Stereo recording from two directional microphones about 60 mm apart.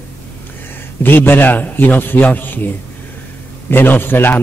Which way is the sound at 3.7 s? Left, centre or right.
Left.